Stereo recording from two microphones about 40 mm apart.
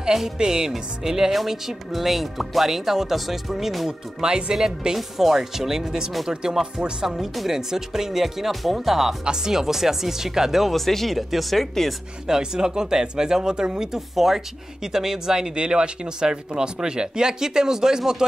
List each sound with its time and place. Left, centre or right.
0.0 s speech: centre
4.2 s speech: right
4.9 s speech: centre
9.2 s speech: centre
10.9 s speech: centre
12.3 s speech: centre